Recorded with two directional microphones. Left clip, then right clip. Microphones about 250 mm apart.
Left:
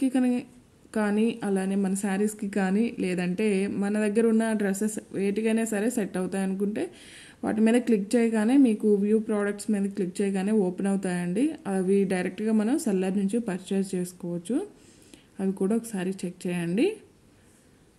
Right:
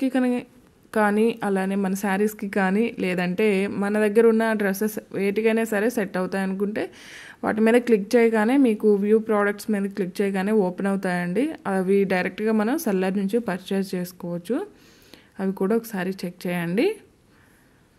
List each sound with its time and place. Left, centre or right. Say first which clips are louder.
0.0 s speech: right 3 dB; right